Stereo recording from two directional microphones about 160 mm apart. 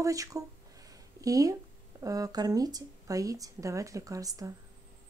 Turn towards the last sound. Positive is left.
turn(degrees=-20)  # may be behind; listen again after turning